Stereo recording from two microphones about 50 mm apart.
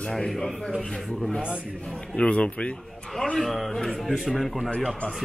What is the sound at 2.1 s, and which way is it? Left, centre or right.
Speech, left.